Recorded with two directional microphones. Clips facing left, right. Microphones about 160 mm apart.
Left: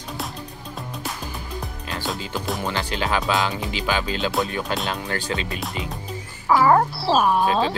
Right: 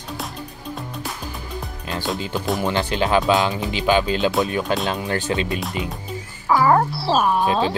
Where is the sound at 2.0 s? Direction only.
Centre (ahead or behind).